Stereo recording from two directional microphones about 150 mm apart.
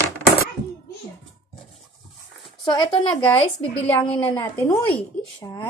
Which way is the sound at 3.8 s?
10° left (ahead or behind).